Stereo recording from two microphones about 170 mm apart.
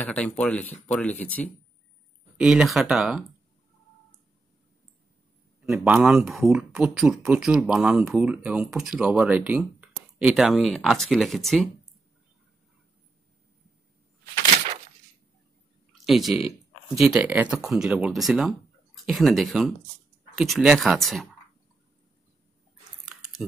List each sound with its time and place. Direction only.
0.0 s speech: 5° left (ahead or behind)
2.3 s speech: 5° right (ahead or behind)
5.6 s speech: 5° right (ahead or behind)
15.9 s a sound: centre (ahead or behind)
16.3 s a sound: 35° left (ahead or behind)
17.0 s speech: 5° right (ahead or behind)